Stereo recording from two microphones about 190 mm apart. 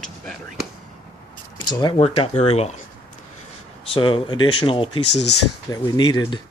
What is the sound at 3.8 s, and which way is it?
Speech, 25° left (ahead or behind).